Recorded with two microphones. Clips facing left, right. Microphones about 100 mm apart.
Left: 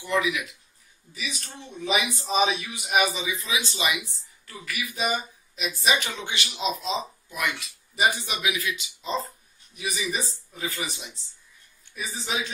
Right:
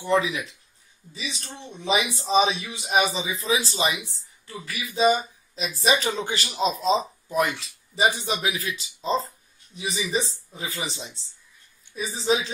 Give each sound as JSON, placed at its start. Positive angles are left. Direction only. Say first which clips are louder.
{"t": 0.0, "sound": "speech", "louder": "right 3 dB", "side_deg": -30}